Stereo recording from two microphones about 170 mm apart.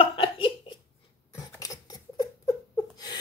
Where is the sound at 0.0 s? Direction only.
35° left (ahead or behind).